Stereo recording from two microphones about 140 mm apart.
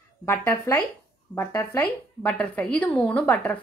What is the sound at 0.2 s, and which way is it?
A woman's voice, 20° left (ahead or behind).